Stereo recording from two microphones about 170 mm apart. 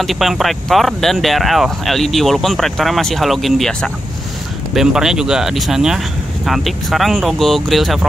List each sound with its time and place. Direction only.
0.0 s speech: centre (ahead or behind)